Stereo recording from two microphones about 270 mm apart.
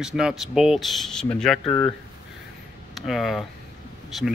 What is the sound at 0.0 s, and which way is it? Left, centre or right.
Speech, centre.